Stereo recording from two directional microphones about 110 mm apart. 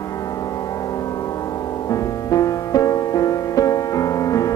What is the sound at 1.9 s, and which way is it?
Music, 30° left (ahead or behind).